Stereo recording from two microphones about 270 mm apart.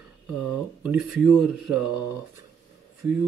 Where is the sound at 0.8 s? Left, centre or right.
Centre.